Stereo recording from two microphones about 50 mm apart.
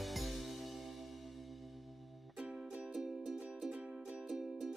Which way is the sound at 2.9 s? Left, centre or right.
Centre.